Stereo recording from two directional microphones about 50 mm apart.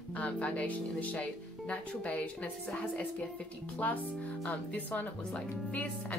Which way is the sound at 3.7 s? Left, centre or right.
Left.